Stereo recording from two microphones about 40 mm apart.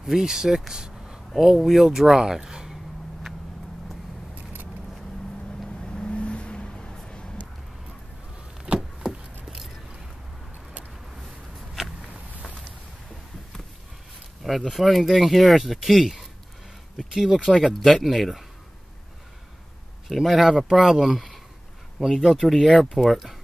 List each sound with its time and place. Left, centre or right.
0.0 s speech: centre
0.8 s a sound: centre
1.4 s speech: centre
2.7 s a sound: centre
5.8 s vehicle: left
8.7 s vehicle: right
9.0 s a sound: centre
14.7 s speech: centre
20.1 s speech: centre